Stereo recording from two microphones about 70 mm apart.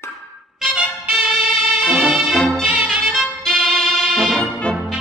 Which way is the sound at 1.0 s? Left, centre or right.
Centre.